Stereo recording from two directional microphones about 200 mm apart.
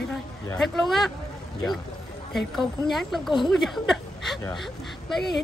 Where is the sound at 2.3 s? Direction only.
Centre (ahead or behind).